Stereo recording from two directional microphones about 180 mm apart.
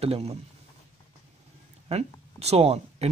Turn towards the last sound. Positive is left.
turn(degrees=-35)  # may be behind; listen again after turning